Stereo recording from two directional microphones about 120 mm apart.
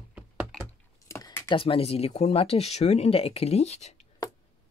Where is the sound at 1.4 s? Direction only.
50° left (ahead or behind).